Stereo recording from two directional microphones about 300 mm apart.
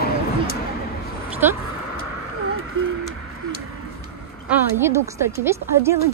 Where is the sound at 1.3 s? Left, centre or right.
Centre.